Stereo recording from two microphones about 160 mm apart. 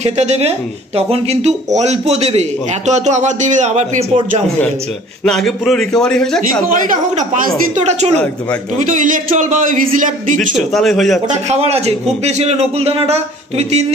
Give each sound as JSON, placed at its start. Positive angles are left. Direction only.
{"t": 0.0, "sound": "speech", "side_deg": -45}
{"t": 5.2, "sound": "a man's voice", "side_deg": 5}
{"t": 6.8, "sound": "speech", "side_deg": -55}
{"t": 7.7, "sound": "speech", "side_deg": -45}
{"t": 8.8, "sound": "speech", "side_deg": -55}
{"t": 10.7, "sound": "a man's voice", "side_deg": 0}
{"t": 11.2, "sound": "a man's voice", "side_deg": -45}